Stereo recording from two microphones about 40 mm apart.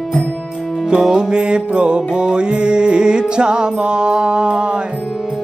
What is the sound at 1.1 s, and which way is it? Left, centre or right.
Music, right.